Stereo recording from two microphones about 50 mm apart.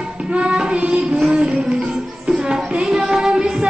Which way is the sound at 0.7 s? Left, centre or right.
Right.